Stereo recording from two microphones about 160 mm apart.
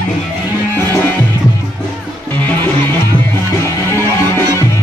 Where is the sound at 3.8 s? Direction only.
15° left (ahead or behind).